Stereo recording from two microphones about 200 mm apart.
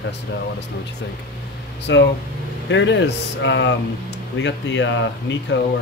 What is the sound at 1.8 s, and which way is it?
Speech, 60° left (ahead or behind).